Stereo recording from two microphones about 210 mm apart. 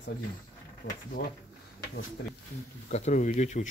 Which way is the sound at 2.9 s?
35° left (ahead or behind).